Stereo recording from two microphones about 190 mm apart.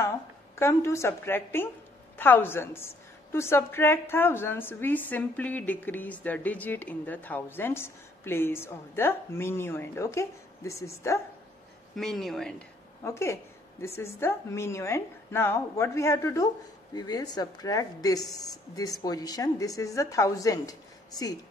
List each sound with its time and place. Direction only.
0.6 s a woman's voice: 15° left (ahead or behind)
11.9 s speech: centre (ahead or behind)
13.0 s a woman's voice: 15° left (ahead or behind)